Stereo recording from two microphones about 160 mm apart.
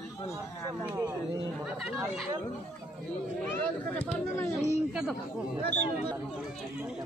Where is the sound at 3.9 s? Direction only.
10° left (ahead or behind).